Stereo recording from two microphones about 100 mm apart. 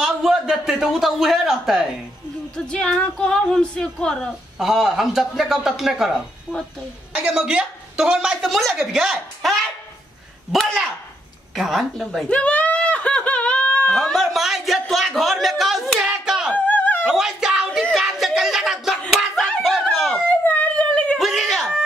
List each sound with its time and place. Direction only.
0.0 s a man's voice: 5° right (ahead or behind)
2.5 s speech: 10° left (ahead or behind)
12.3 s speech: 10° left (ahead or behind)
16.1 s hands: 10° right (ahead or behind)
16.5 s a sound: 15° left (ahead or behind)
17.1 s speech: 5° right (ahead or behind)
17.9 s a sound: centre (ahead or behind)
20.2 s dog: 15° left (ahead or behind)
21.2 s a sound: centre (ahead or behind)